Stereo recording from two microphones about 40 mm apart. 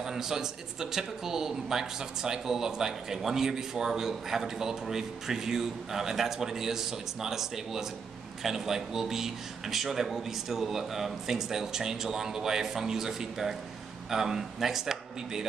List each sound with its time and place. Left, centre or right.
0.0 s speech: centre